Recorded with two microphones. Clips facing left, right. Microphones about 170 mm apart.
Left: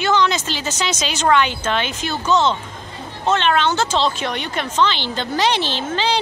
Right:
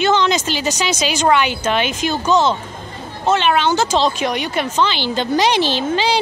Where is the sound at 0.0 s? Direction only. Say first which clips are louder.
Right 2 dB; 25° right (ahead or behind).